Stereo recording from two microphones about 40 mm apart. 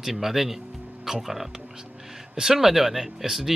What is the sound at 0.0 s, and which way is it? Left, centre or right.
Speech, centre.